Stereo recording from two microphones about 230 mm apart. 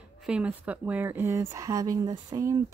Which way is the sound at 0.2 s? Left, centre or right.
Centre.